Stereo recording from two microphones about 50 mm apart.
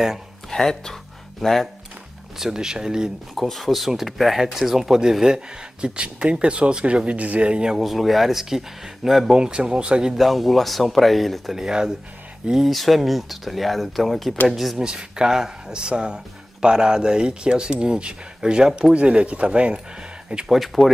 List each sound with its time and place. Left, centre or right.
0.5 s speech: centre
2.3 s speech: centre
3.3 s speech: centre
7.8 s speech: centre
9.4 s speech: centre
10.1 s speech: centre
11.5 s speech: centre
12.6 s speech: centre
14.8 s speech: centre
20.4 s speech: centre